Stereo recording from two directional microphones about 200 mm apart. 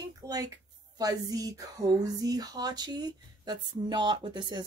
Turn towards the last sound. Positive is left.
turn(degrees=-20)  # may be behind; listen again after turning